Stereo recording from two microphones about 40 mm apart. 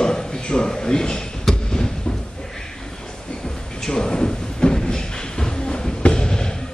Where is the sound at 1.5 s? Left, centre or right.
Centre.